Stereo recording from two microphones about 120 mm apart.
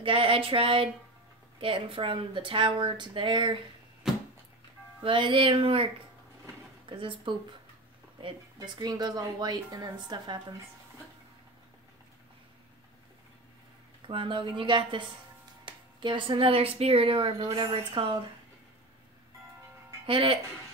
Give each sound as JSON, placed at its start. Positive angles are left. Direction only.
{"t": 0.0, "sound": "speech", "side_deg": -50}
{"t": 4.1, "sound": "a sound", "side_deg": -5}
{"t": 5.0, "sound": "speech", "side_deg": -45}
{"t": 6.9, "sound": "speech", "side_deg": -45}
{"t": 8.5, "sound": "a woman's voice", "side_deg": -35}
{"t": 14.0, "sound": "speech", "side_deg": -45}
{"t": 20.1, "sound": "speech", "side_deg": -45}